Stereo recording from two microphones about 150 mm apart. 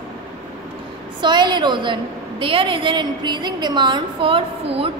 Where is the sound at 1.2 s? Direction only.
30° right (ahead or behind).